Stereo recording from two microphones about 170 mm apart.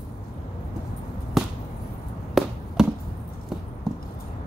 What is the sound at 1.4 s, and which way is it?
Chop, centre (ahead or behind).